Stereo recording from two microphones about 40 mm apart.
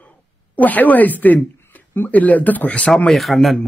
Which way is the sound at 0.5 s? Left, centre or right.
Left.